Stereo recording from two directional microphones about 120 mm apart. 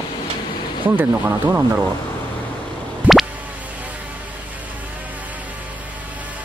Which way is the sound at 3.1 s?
10° right (ahead or behind).